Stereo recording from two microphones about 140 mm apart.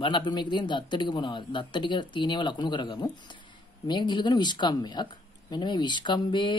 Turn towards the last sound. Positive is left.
turn(degrees=30)  # may be behind; listen again after turning